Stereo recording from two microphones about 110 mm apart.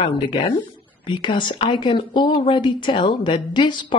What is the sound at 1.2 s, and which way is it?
Speech, 45° left (ahead or behind).